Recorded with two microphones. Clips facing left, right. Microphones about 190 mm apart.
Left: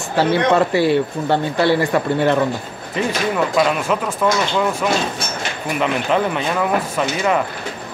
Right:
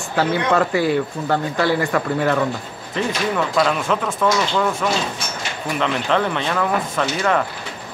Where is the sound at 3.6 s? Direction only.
10° left (ahead or behind).